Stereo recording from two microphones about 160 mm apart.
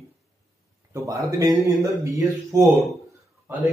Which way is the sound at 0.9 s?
20° right (ahead or behind).